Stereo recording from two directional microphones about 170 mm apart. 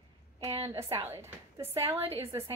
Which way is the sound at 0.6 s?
20° right (ahead or behind).